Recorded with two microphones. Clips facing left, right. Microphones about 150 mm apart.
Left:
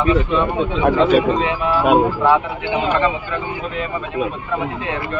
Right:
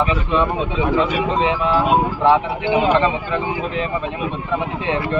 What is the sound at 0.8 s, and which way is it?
Speech, 55° left (ahead or behind).